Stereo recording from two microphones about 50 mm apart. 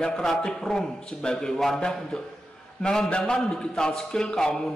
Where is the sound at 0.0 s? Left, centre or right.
Centre.